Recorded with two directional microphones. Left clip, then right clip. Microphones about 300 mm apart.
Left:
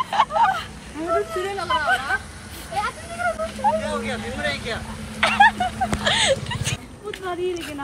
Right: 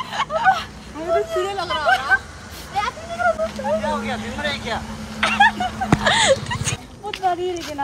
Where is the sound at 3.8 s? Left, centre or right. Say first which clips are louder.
Right 3 dB; right.